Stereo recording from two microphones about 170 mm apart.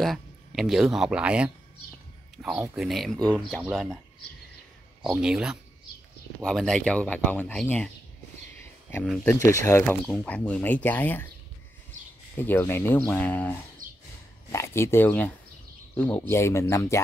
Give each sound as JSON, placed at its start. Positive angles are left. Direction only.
{"t": 0.0, "sound": "speech", "side_deg": 0}
{"t": 5.0, "sound": "speech", "side_deg": -5}
{"t": 9.4, "sound": "speech", "side_deg": 15}
{"t": 12.4, "sound": "speech", "side_deg": 10}
{"t": 13.8, "sound": "a sound", "side_deg": -55}
{"t": 14.5, "sound": "speech", "side_deg": 15}